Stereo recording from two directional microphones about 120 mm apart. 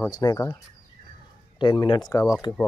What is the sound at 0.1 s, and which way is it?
Speech, 30° left (ahead or behind).